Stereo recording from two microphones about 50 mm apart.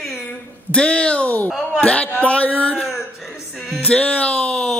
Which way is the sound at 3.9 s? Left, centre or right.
Left.